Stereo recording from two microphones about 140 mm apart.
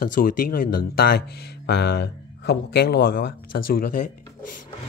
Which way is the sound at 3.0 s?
90° left.